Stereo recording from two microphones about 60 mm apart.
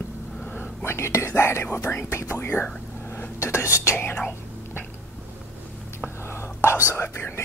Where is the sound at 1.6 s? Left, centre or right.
Left.